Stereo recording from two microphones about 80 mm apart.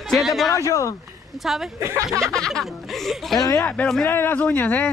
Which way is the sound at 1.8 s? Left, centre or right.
Right.